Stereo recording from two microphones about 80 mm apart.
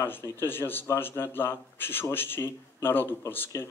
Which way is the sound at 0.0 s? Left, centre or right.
Left.